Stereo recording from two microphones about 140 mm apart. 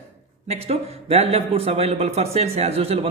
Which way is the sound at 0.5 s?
50° right (ahead or behind).